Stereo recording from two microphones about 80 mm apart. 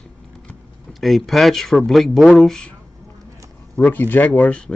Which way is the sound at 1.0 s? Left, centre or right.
Centre.